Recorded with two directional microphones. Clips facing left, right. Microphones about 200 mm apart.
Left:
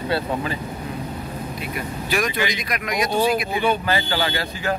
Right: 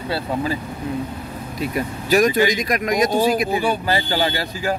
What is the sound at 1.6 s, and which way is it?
Speech, 40° right (ahead or behind).